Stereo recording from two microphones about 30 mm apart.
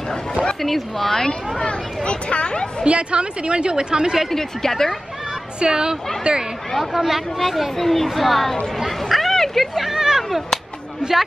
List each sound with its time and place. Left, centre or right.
0.6 s speech: centre
1.6 s speech: left
2.8 s a woman's voice: right
4.3 s speech: centre
5.6 s a woman's voice: right
6.8 s speech: centre
7.7 s speech: centre
9.3 s a sound: centre
9.9 s cat: centre